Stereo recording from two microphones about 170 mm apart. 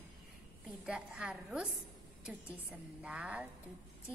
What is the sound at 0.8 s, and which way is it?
Speech, 5° right (ahead or behind).